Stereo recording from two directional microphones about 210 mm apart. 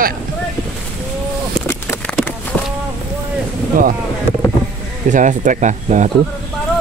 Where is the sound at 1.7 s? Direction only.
10° left (ahead or behind).